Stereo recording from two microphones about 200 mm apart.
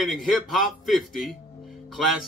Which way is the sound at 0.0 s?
Centre (ahead or behind).